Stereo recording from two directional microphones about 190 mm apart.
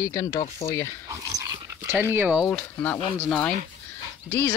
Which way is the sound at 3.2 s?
5° left (ahead or behind).